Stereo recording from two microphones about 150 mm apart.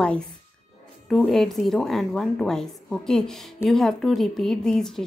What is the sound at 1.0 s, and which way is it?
A woman's voice, centre (ahead or behind).